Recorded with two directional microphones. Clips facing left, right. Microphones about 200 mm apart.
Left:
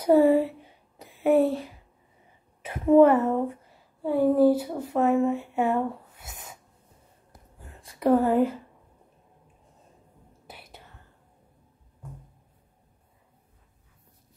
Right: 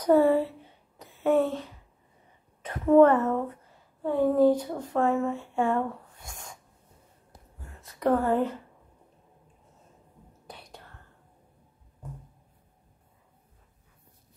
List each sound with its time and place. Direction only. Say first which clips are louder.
0.0 s a sound: left 2 dB; 10° left (ahead or behind)
2.6 s a woman's voice: left 1 dB; 10° left (ahead or behind)
7.8 s a woman's voice: left 3 dB; 10° left (ahead or behind)
10.4 s whispering: right 1 dB; 5° left (ahead or behind)